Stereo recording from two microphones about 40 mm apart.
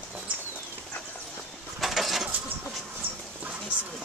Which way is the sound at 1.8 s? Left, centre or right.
Centre.